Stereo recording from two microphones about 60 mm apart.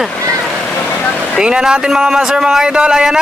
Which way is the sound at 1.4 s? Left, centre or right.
Centre.